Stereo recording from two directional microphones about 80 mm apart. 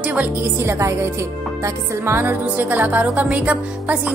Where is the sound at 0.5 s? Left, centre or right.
Right.